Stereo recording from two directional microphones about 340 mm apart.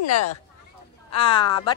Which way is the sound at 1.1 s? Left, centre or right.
Centre.